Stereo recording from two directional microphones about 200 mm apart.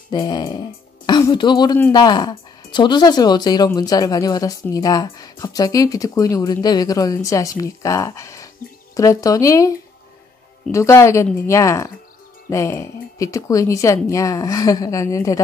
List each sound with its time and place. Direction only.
0.1 s speech: 20° left (ahead or behind)